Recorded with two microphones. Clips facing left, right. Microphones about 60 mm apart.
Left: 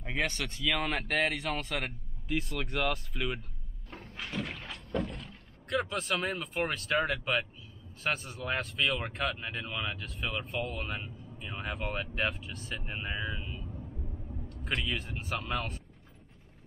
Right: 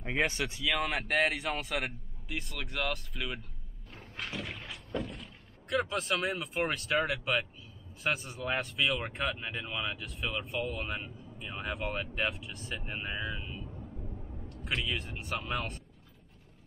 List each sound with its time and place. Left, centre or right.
0.0 s speech: centre
4.4 s speech: centre